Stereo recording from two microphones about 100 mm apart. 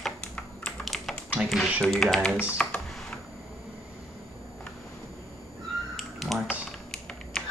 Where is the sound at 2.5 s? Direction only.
15° left (ahead or behind).